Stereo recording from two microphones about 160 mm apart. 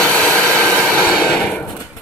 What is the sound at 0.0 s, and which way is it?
Vehicle, 10° left (ahead or behind).